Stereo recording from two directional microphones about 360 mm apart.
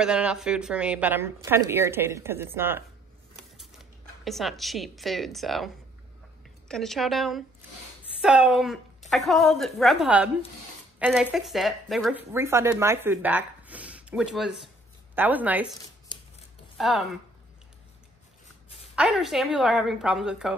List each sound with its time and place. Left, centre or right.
0.0 s speech: centre
6.7 s speech: centre
16.7 s speech: centre
18.9 s speech: centre